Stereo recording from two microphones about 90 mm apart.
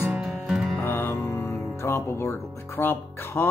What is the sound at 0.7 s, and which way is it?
Speech, 25° left (ahead or behind).